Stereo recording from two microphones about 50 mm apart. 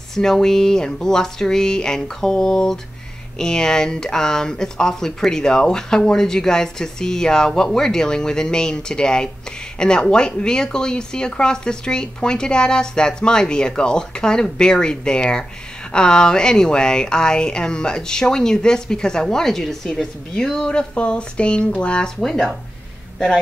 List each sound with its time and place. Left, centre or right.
0.1 s speech: centre